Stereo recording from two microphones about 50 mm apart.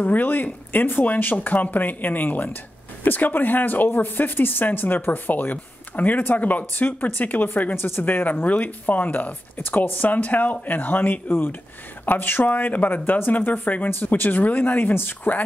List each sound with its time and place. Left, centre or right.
0.0 s speech: left
7.7 s speech: left
13.8 s speech: left